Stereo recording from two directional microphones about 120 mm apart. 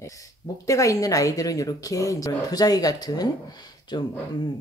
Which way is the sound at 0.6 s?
25° left (ahead or behind).